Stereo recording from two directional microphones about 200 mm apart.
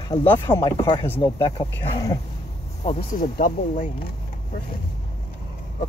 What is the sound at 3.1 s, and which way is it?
Speech, 40° left (ahead or behind).